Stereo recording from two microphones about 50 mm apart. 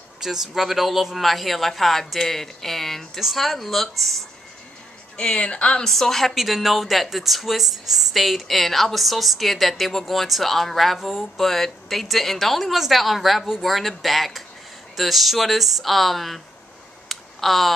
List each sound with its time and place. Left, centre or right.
0.2 s speech: centre
5.1 s a woman's voice: centre
5.9 s speech: centre
17.1 s a sound: centre